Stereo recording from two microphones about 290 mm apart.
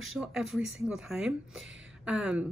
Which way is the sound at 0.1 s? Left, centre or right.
Centre.